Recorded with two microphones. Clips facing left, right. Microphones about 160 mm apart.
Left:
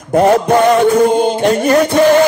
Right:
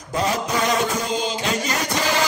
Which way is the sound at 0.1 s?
60° left (ahead or behind).